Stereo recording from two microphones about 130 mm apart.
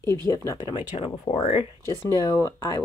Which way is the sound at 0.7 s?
50° left (ahead or behind).